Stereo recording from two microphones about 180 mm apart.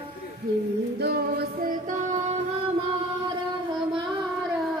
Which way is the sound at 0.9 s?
65° right (ahead or behind).